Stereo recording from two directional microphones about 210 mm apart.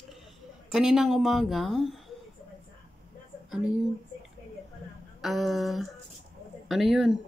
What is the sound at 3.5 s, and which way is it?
Speech, 5° right (ahead or behind).